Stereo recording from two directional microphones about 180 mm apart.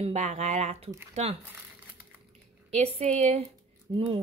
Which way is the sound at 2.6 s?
35° right (ahead or behind).